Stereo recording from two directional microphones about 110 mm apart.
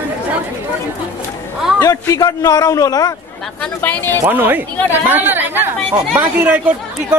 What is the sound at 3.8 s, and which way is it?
Speech, 20° left (ahead or behind).